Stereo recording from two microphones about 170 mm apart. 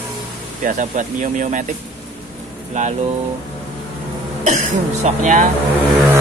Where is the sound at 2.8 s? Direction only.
45° right (ahead or behind).